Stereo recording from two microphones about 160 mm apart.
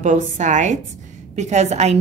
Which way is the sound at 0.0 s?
50° right (ahead or behind).